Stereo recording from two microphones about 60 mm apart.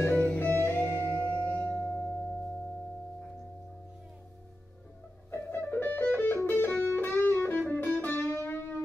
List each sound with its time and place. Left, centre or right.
0.2 s music: left
1.4 s singing bowl: left
5.3 s music: left
7.5 s music: left